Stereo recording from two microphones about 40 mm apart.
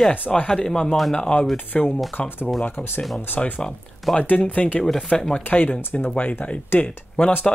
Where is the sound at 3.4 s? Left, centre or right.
Left.